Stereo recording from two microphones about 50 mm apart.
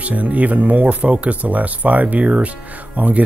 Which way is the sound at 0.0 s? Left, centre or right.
Right.